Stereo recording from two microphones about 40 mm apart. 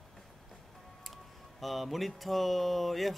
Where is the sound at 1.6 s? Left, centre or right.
Centre.